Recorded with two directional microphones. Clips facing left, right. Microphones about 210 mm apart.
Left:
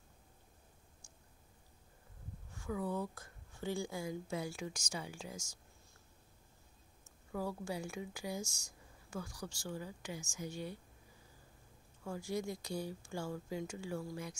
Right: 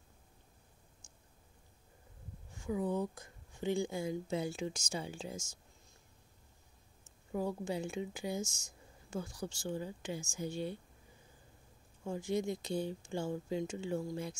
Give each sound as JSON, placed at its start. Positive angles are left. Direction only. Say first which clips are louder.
{"t": 1.0, "sound": "a sound", "louder": "even", "side_deg": -20}
{"t": 2.5, "sound": "a woman's voice", "louder": "right 4 dB", "side_deg": -20}
{"t": 7.3, "sound": "a woman's voice", "louder": "right 4 dB", "side_deg": -20}
{"t": 12.0, "sound": "a woman's voice", "louder": "right 4 dB", "side_deg": -20}